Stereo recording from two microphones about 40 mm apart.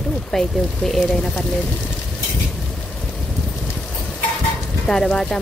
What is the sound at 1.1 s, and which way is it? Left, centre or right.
Speech, centre.